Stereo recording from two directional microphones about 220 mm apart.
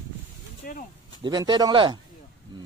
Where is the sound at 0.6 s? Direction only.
40° left (ahead or behind).